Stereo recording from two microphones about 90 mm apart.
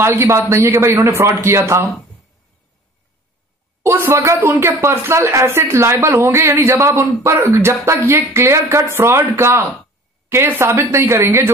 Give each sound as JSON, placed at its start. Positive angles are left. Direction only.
{"t": 0.0, "sound": "speech", "side_deg": -25}
{"t": 3.8, "sound": "speech", "side_deg": -30}